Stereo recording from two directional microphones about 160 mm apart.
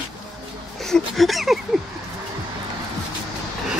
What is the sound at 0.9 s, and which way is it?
Speech, centre (ahead or behind).